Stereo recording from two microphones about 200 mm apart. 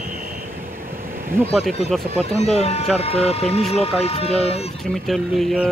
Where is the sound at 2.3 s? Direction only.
30° left (ahead or behind).